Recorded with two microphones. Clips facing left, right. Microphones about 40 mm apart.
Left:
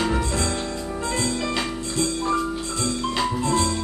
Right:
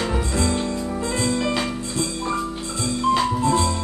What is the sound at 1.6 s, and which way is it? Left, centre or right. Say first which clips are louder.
Music: even; centre.